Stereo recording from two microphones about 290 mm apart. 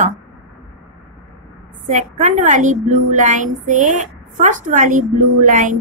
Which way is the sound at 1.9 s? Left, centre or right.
Right.